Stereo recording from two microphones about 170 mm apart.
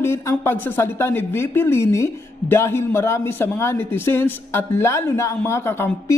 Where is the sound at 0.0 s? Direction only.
15° left (ahead or behind).